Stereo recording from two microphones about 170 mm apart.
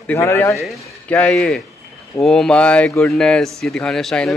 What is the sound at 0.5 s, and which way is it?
Speech, 5° left (ahead or behind).